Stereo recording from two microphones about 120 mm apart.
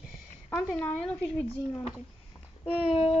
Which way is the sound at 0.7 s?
10° left (ahead or behind).